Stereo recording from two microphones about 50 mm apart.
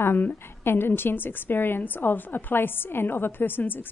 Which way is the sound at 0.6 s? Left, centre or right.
Left.